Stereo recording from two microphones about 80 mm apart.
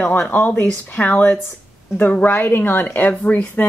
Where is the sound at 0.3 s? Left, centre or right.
Left.